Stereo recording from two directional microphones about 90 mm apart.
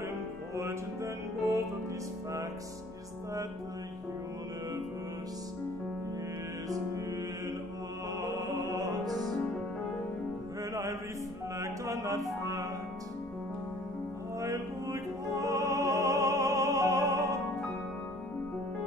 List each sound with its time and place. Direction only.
0.6 s music: 30° right (ahead or behind)
6.7 s music: 40° right (ahead or behind)
10.6 s music: 35° right (ahead or behind)
14.4 s music: 40° right (ahead or behind)